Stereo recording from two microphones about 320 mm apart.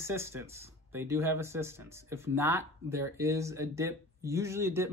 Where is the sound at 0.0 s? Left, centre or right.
Centre.